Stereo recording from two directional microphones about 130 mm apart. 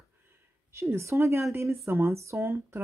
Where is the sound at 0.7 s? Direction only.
20° right (ahead or behind).